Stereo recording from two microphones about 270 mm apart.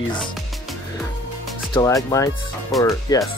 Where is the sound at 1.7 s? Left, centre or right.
Centre.